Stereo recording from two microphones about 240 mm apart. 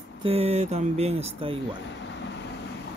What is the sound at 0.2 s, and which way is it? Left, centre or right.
Speech, right.